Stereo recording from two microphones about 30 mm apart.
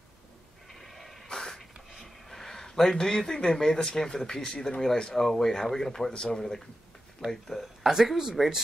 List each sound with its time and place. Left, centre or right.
0.7 s a sound: centre
3.0 s speech: left
7.8 s speech: centre